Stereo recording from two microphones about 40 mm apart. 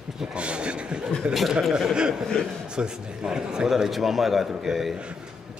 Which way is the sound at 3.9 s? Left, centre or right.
Centre.